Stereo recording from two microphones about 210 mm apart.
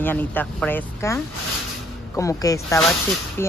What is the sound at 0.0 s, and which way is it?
Speech, 10° left (ahead or behind).